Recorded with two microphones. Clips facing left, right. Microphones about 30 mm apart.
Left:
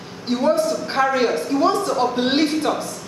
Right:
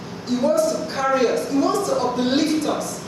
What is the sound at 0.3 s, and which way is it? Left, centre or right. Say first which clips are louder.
A woman's voice: even; left.